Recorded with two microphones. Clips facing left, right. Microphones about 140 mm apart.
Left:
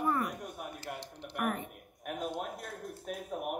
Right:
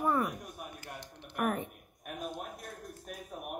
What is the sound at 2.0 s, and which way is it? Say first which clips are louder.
Speech: left 4 dB; 65° left (ahead or behind).